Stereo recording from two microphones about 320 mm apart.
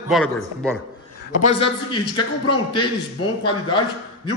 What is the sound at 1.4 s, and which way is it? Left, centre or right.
A man's voice, centre.